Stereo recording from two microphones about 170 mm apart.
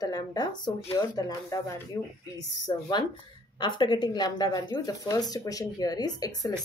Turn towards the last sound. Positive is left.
turn(degrees=20)  # may be behind; listen again after turning